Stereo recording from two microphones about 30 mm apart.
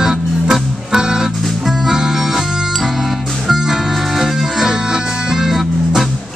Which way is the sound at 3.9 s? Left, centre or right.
Centre.